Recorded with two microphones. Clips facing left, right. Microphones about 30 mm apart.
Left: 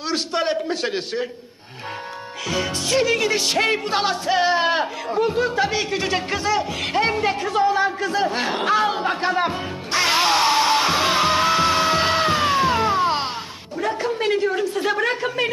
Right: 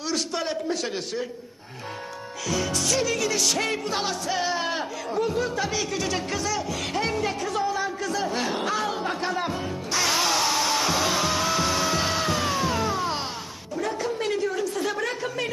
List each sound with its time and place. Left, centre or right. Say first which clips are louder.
0.1 s a man's voice: left 6 dB; left
2.5 s music: left 4 dB; left
13.7 s a woman's voice: left 4 dB; left